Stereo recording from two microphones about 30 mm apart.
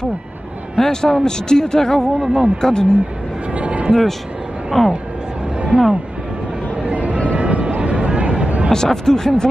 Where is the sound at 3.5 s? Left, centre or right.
Right.